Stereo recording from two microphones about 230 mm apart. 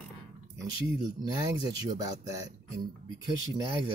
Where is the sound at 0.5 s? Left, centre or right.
Centre.